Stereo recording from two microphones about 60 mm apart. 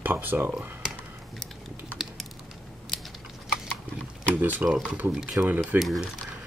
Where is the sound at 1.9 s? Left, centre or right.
Left.